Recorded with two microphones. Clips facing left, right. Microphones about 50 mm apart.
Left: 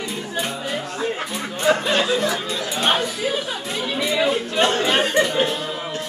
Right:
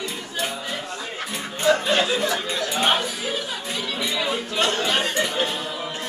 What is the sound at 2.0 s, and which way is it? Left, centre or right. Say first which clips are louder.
Speech: left 2 dB; centre.